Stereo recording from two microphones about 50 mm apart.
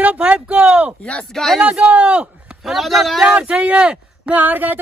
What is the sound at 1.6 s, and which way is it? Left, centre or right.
Speech, right.